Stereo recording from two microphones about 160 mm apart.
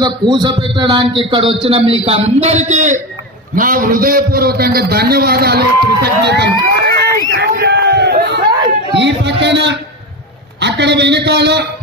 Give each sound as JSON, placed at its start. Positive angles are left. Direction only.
{"t": 0.0, "sound": "a man's voice", "side_deg": -30}
{"t": 3.5, "sound": "a man's voice", "side_deg": -60}
{"t": 6.2, "sound": "a sound", "side_deg": -90}
{"t": 8.9, "sound": "a man's voice", "side_deg": -90}